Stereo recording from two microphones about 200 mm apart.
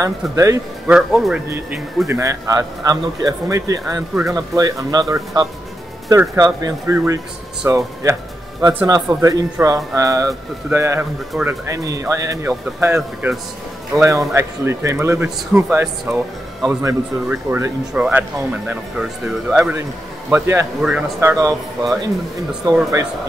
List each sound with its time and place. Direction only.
0.0 s speech: 15° right (ahead or behind)
0.8 s speech: centre (ahead or behind)
2.0 s speech: 15° right (ahead or behind)